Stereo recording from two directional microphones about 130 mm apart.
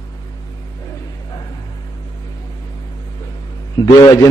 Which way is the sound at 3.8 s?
35° left (ahead or behind).